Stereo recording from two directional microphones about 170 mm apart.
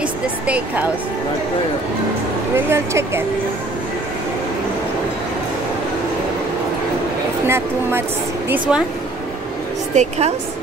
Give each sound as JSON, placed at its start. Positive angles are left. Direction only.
{"t": 2.5, "sound": "speech", "side_deg": -15}
{"t": 7.4, "sound": "speech", "side_deg": -15}
{"t": 9.9, "sound": "a woman's voice", "side_deg": -40}